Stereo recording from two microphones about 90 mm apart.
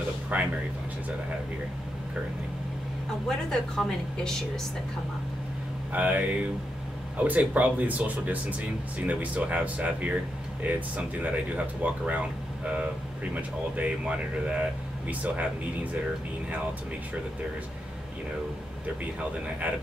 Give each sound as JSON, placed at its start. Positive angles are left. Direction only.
{"t": 0.3, "sound": "speech", "side_deg": -20}
{"t": 3.3, "sound": "a woman's voice", "side_deg": 5}
{"t": 5.9, "sound": "speech", "side_deg": -15}
{"t": 13.3, "sound": "speech", "side_deg": -15}